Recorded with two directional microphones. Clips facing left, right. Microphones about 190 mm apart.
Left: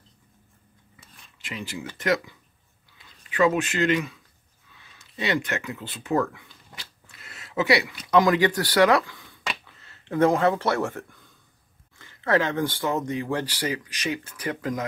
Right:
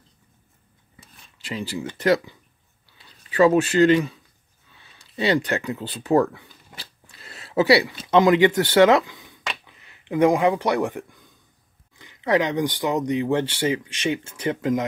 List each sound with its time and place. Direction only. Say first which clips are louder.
1.4 s speech: right 5 dB; 35° right (ahead or behind)